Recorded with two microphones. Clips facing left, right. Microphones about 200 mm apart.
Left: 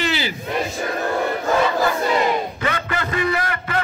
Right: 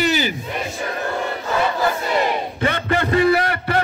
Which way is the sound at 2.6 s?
35° right (ahead or behind).